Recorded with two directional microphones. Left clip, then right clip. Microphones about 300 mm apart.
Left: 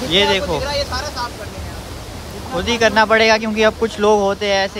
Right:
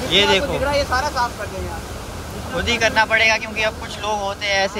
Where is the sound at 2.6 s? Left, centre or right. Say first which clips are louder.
Left 3 dB; centre.